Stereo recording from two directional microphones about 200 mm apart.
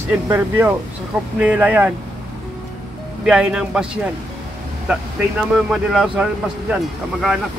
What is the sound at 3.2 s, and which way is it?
Speech, 5° right (ahead or behind).